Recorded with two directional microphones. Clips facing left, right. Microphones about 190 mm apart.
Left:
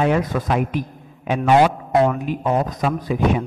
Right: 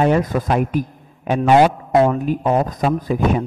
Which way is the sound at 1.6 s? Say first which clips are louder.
Right 2 dB; 30° right (ahead or behind).